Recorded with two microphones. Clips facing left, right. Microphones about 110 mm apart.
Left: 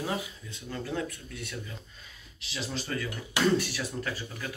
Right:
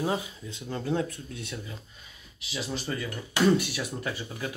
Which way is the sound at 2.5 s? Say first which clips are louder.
Right 2 dB; 10° right (ahead or behind).